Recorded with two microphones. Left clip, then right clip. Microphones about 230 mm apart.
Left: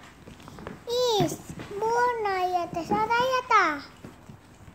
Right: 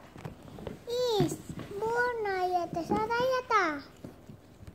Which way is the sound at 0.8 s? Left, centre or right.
Centre.